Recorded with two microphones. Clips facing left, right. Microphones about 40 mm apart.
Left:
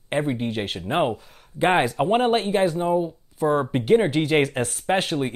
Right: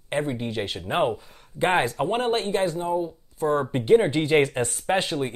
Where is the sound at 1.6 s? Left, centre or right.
Centre.